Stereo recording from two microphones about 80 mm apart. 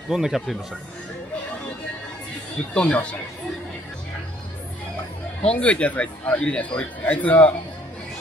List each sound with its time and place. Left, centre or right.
0.1 s speech: centre
2.7 s speech: centre
5.5 s speech: centre